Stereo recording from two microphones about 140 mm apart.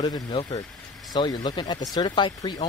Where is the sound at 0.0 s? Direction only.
35° left (ahead or behind).